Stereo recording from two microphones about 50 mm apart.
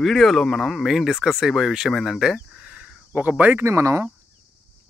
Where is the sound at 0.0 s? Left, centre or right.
Centre.